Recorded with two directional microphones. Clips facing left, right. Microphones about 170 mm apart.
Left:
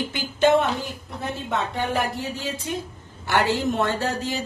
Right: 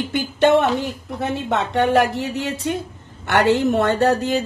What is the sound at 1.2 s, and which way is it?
A woman's voice, 80° right.